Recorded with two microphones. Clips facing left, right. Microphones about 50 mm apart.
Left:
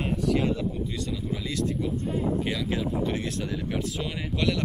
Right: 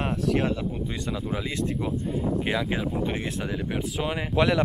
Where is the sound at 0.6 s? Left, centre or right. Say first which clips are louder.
Even; right.